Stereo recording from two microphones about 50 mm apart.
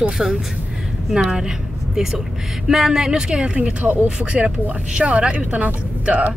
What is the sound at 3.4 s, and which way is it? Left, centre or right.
Speech, right.